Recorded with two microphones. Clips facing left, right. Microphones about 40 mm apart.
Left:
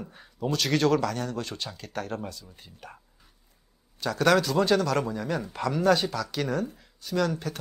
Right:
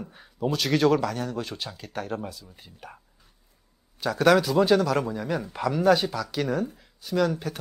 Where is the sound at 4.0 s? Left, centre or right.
Centre.